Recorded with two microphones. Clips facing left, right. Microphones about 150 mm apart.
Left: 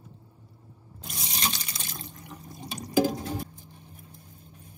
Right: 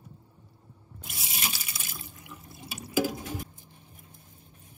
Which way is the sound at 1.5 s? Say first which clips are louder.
Left 3 dB; 5° right (ahead or behind).